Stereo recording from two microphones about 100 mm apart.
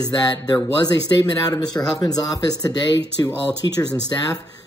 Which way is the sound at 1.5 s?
40° left (ahead or behind).